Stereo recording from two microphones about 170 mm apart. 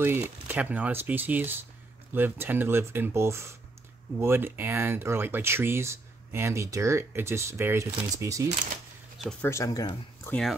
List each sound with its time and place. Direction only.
0.0 s speech: 10° right (ahead or behind)
9.4 s speech: 15° left (ahead or behind)